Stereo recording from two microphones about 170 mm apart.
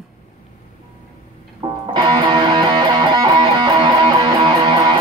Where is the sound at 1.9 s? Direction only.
25° right (ahead or behind).